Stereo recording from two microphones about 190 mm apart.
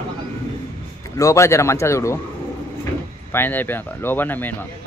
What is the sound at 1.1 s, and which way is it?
Speech, 15° left (ahead or behind).